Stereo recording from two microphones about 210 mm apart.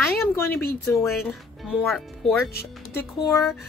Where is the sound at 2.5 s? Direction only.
50° left (ahead or behind).